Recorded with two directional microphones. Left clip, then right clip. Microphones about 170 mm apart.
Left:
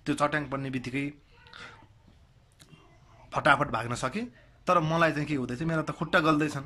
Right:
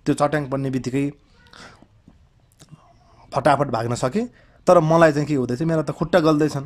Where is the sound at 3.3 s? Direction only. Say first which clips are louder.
Right 6 dB; 30° right (ahead or behind).